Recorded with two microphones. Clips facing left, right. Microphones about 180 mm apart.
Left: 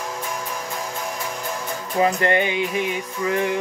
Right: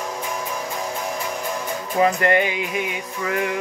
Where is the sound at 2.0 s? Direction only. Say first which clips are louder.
Right 1 dB; 25° left (ahead or behind).